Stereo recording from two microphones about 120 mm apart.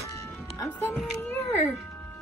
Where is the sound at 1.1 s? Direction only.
15° left (ahead or behind).